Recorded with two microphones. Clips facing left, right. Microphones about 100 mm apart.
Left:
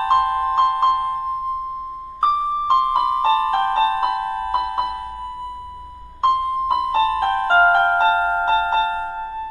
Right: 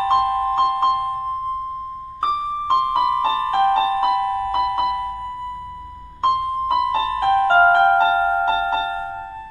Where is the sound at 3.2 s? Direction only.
50° left (ahead or behind).